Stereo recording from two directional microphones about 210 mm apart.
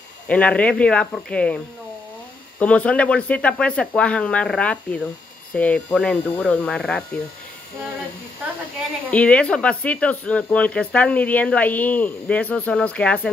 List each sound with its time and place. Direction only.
0.3 s speech: 5° left (ahead or behind)
2.6 s speech: 5° left (ahead or behind)
9.1 s speech: 5° left (ahead or behind)